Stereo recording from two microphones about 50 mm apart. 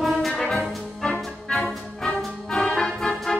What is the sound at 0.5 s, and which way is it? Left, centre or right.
Music, centre.